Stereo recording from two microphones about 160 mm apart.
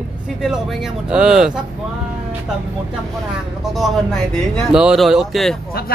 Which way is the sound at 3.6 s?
Centre (ahead or behind).